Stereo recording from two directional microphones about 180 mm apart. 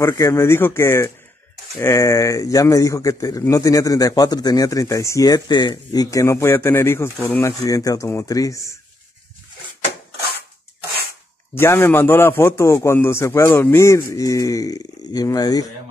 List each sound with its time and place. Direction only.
0.0 s speech: 15° left (ahead or behind)
11.5 s speech: 15° left (ahead or behind)